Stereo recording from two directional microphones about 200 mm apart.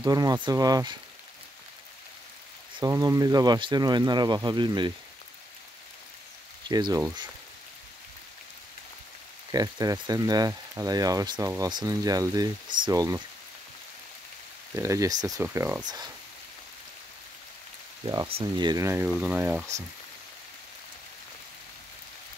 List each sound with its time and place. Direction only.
0.0 s speech: 20° right (ahead or behind)
2.8 s speech: 15° right (ahead or behind)
6.7 s speech: 20° right (ahead or behind)
9.5 s speech: 20° right (ahead or behind)
14.8 s speech: 15° right (ahead or behind)
18.0 s speech: 20° right (ahead or behind); by 19.6 s 5° right (ahead or behind)